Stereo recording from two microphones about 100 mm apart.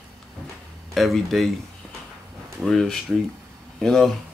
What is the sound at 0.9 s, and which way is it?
Speech, centre (ahead or behind).